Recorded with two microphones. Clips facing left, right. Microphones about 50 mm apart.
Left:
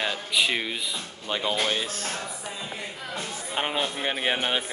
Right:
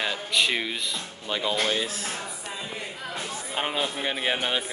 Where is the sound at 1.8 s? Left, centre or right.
Left.